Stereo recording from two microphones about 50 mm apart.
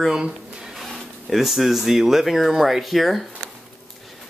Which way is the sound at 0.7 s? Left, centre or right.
Centre.